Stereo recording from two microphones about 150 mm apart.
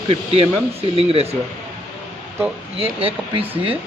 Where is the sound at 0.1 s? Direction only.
40° right (ahead or behind).